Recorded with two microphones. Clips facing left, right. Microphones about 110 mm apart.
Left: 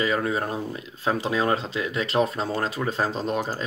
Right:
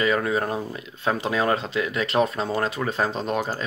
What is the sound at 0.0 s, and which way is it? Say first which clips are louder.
Speech: right 2 dB; 30° left (ahead or behind).